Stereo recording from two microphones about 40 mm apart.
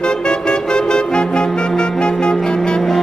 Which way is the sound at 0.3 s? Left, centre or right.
Centre.